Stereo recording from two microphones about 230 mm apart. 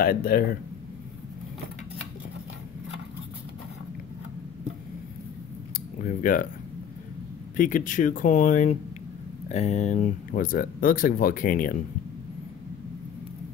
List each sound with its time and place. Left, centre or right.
0.0 s speech: left
6.0 s speech: left
7.5 s speech: left